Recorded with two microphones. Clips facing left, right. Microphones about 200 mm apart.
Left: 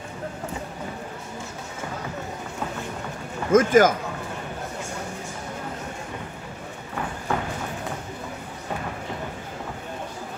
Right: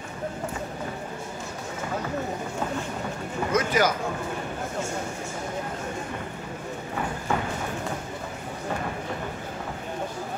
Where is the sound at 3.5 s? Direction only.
50° left (ahead or behind).